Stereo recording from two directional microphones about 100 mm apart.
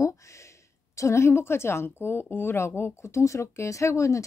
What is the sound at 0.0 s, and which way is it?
A woman's voice, 30° left (ahead or behind).